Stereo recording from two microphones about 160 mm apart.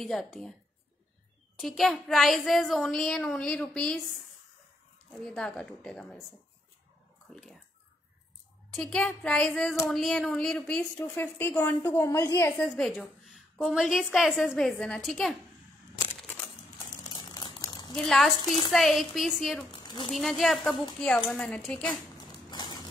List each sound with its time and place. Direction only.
0.0 s a woman's voice: 5° left (ahead or behind)
1.6 s a woman's voice: centre (ahead or behind)
5.1 s a woman's voice: 5° left (ahead or behind)
8.7 s a woman's voice: 5° left (ahead or behind)
17.1 s crumpling: 25° left (ahead or behind)
17.9 s a woman's voice: centre (ahead or behind)
19.7 s a sound: 25° left (ahead or behind)
20.1 s a woman's voice: centre (ahead or behind)
22.5 s a sound: 25° left (ahead or behind)